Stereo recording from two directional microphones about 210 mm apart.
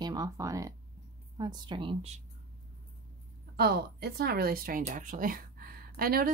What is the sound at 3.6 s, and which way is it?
Speech, 50° right (ahead or behind).